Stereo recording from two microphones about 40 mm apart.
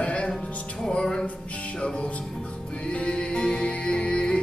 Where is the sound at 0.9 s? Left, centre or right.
Centre.